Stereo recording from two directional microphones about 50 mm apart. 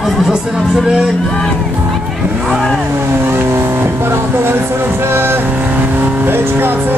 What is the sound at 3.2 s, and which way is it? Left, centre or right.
Speech, right.